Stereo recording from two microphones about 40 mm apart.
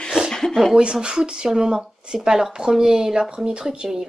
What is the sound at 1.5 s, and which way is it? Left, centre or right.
Speech, centre.